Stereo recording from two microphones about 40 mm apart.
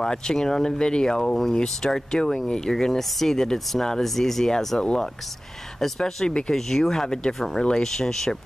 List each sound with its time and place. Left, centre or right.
0.0 s speech: centre
2.7 s speech: centre